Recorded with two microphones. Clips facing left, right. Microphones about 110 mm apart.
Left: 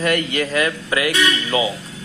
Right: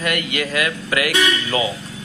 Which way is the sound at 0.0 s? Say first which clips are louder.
Left 3 dB; 35° left (ahead or behind).